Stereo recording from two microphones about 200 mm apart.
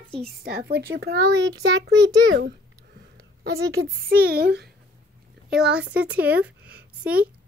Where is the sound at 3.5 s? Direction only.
50° right (ahead or behind).